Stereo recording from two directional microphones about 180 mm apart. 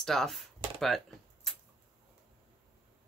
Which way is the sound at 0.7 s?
Centre (ahead or behind).